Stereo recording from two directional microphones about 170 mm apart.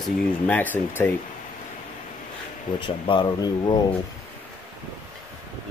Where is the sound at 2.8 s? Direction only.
30° left (ahead or behind).